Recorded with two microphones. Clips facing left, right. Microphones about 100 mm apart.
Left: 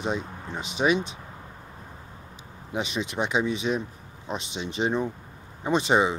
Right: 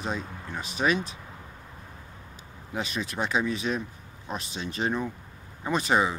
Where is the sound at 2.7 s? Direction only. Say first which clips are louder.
Left 3 dB; 20° left (ahead or behind).